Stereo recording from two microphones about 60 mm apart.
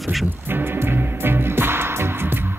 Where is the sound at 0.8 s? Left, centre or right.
Right.